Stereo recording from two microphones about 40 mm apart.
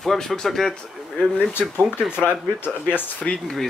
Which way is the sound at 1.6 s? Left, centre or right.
Right.